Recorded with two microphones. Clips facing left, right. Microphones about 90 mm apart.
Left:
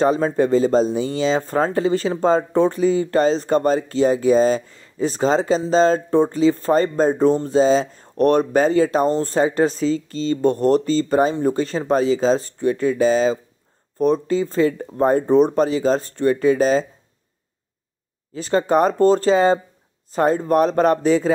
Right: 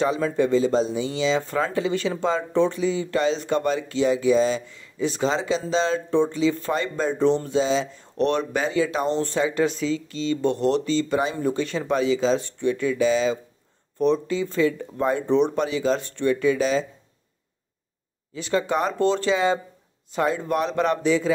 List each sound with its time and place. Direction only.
0.0 s speech: 40° left (ahead or behind)
18.3 s speech: 40° left (ahead or behind)